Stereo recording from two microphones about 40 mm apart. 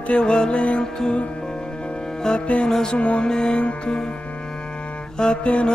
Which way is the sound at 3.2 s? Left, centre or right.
Centre.